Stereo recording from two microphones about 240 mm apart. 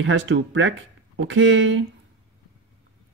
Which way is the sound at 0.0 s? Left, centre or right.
Right.